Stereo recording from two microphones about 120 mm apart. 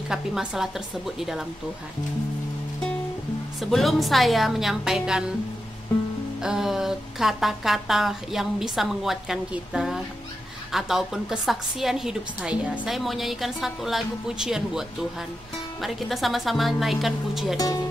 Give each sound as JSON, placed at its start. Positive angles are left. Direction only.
{"t": 0.1, "sound": "speech", "side_deg": -5}
{"t": 3.7, "sound": "speech", "side_deg": 0}
{"t": 6.4, "sound": "speech", "side_deg": -5}
{"t": 17.6, "sound": "speech", "side_deg": 30}